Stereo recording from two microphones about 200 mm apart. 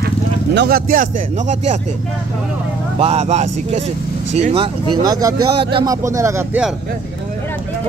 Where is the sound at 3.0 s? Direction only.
30° right (ahead or behind); by 6.7 s 10° right (ahead or behind).